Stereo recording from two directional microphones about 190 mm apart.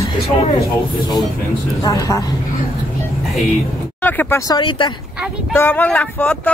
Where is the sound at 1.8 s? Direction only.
15° left (ahead or behind).